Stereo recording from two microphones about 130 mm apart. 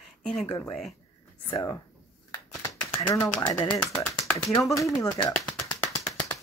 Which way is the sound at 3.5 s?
30° left (ahead or behind).